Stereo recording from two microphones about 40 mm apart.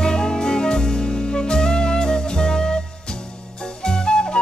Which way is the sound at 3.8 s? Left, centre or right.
Centre.